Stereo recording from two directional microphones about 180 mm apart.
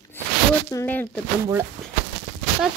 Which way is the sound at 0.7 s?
10° left (ahead or behind).